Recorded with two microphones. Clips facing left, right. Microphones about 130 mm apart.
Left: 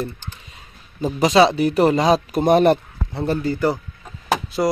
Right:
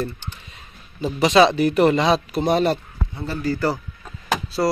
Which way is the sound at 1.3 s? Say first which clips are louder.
Even; 25° left (ahead or behind).